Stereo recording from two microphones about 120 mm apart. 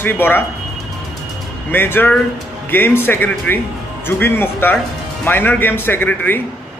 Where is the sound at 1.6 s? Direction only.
15° left (ahead or behind).